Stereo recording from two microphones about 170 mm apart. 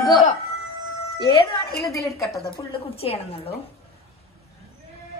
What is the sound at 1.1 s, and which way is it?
Speech, 30° left (ahead or behind).